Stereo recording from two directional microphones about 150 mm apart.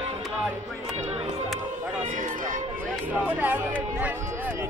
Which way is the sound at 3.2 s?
10° right (ahead or behind).